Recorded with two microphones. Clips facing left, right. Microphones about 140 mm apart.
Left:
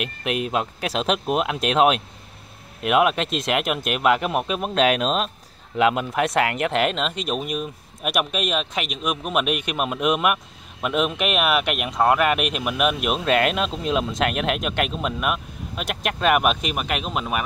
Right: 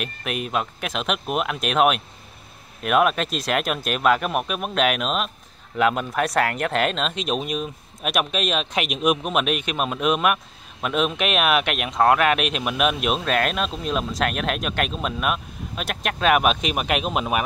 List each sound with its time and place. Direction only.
0.0 s speech: 20° left (ahead or behind)
5.8 s speech: 20° left (ahead or behind); by 8.8 s 5° left (ahead or behind)
8.9 s speech: 10° right (ahead or behind)
9.2 s a man's voice: 5° left (ahead or behind)
13.2 s speech: 20° left (ahead or behind)
16.7 s speech: 5° right (ahead or behind)